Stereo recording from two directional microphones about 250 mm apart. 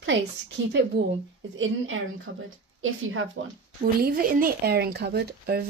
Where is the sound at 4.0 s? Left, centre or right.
Right.